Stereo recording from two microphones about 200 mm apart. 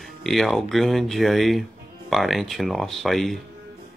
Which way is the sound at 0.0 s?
Centre (ahead or behind).